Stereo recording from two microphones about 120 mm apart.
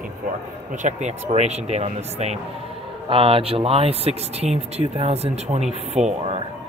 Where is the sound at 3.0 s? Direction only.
45° right (ahead or behind).